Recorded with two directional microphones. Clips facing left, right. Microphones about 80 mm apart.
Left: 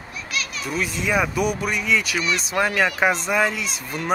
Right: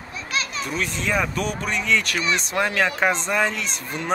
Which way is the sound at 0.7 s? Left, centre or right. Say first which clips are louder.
Left 5 dB; centre.